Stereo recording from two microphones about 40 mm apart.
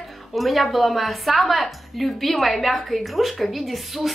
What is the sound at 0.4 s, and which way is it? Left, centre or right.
A woman's voice, centre.